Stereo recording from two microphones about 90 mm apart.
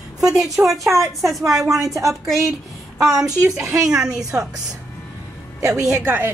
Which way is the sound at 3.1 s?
40° right (ahead or behind).